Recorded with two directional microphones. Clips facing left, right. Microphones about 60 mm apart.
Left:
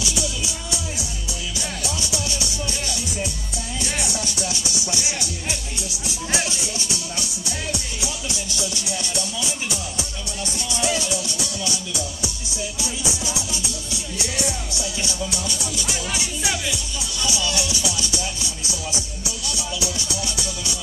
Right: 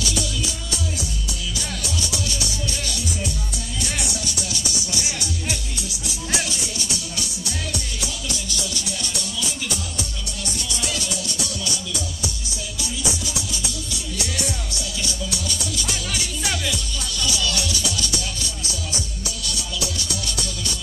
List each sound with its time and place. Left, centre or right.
0.0 s music: centre
2.1 s music: left
3.8 s music: left
6.0 s music: left
10.7 s music: left
12.8 s music: left